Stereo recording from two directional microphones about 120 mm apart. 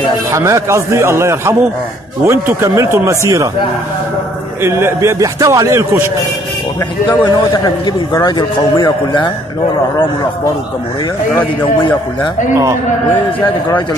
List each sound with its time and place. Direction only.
0.3 s a man's voice: 25° right (ahead or behind)
4.6 s a man's voice: 20° right (ahead or behind)
7.1 s a man's voice: 40° left (ahead or behind)
13.4 s a man's voice: 20° left (ahead or behind)